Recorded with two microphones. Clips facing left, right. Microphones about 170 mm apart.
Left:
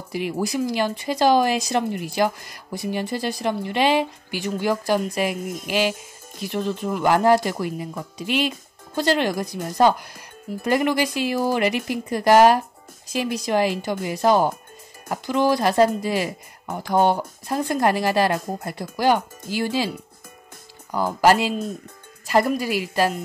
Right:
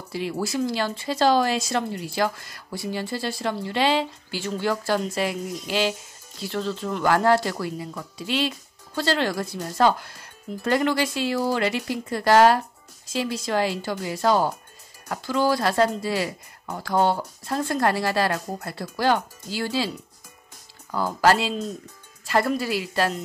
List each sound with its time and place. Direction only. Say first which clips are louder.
0.1 s speech: left 2 dB; 15° left (ahead or behind)
20.9 s speech: left 2 dB; 15° left (ahead or behind)